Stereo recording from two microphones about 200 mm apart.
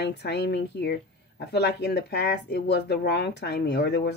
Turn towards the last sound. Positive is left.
turn(degrees=55)  # may be behind; listen again after turning